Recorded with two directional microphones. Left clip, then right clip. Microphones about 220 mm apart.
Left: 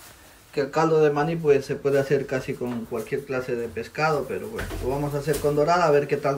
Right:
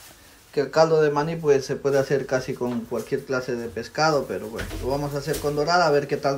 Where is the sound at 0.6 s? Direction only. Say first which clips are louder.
Right 2 dB; 10° right (ahead or behind).